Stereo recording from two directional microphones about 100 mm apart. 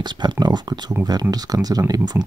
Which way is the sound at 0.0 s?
45° right (ahead or behind).